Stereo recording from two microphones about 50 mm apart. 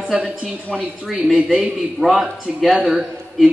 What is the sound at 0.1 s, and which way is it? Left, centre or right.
Speech, centre.